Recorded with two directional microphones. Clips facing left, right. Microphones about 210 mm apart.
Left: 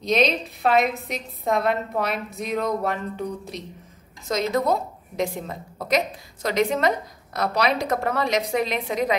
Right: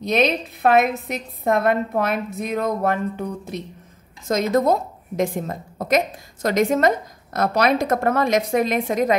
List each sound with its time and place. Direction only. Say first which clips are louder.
0.0 s a woman's voice: right 2 dB; 55° right (ahead or behind)